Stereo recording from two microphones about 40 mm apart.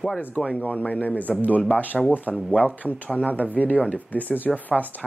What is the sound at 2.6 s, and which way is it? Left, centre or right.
A man's voice, left.